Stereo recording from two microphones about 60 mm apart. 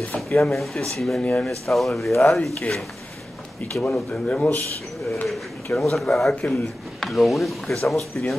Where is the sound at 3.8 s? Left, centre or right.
Left.